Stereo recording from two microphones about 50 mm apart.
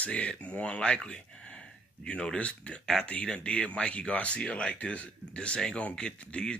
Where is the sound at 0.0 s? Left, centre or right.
Left.